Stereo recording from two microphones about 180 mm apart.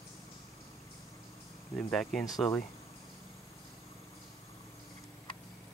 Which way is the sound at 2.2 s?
20° left (ahead or behind).